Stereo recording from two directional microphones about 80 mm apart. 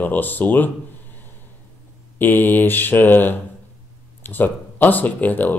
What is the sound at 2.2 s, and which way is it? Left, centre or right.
Speech, left.